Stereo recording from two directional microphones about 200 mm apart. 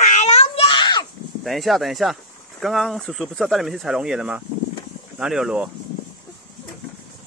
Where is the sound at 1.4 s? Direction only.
Centre (ahead or behind).